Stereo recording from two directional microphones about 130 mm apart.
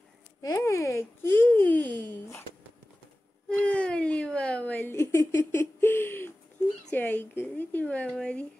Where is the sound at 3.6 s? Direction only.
10° left (ahead or behind).